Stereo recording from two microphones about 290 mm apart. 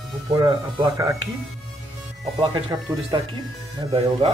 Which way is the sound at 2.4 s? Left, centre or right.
Centre.